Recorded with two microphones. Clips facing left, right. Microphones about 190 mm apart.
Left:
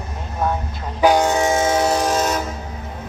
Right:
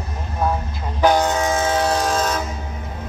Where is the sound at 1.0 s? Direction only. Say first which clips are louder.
Left 2 dB; 15° left (ahead or behind).